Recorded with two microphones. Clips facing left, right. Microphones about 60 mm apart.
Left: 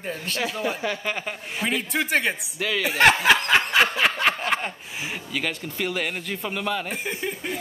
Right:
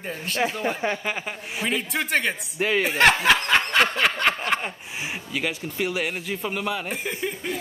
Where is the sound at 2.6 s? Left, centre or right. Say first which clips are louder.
Right 6 dB; right.